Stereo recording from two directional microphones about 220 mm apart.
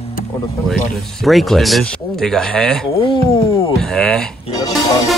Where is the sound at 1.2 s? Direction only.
Centre (ahead or behind).